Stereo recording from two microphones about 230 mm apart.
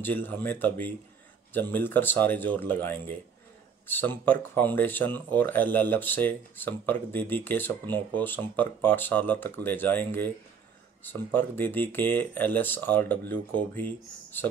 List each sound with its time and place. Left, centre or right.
0.0 s speech: centre